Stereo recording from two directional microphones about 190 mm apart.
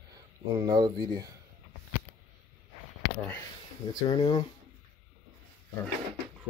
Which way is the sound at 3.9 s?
20° left (ahead or behind).